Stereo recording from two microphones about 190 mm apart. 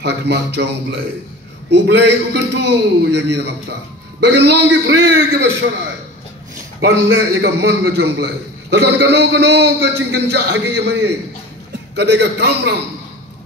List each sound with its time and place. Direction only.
0.0 s a man's voice: 65° right (ahead or behind)
2.0 s a man's voice: 65° right (ahead or behind)
6.8 s a man's voice: 65° right (ahead or behind)